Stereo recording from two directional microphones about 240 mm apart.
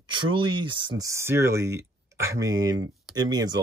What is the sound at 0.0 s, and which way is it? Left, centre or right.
Speech, centre.